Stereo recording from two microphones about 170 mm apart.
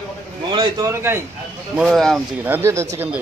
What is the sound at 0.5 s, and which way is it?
Speech, 25° right (ahead or behind).